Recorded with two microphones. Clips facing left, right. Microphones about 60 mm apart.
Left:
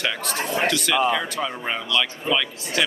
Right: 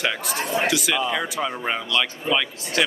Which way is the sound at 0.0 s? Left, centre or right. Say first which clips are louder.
Right 1 dB; centre.